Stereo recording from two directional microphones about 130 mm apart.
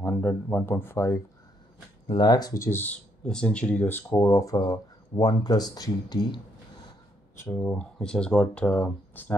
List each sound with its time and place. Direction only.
0.0 s speech: 15° left (ahead or behind)
2.0 s speech: 35° left (ahead or behind); by 4.0 s 15° left (ahead or behind)
4.1 s speech: 25° left (ahead or behind)
7.5 s speech: 10° left (ahead or behind)